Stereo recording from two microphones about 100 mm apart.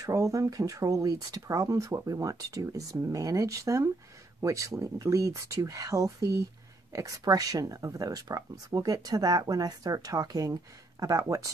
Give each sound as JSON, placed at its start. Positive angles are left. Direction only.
{"t": 0.0, "sound": "speech", "side_deg": -35}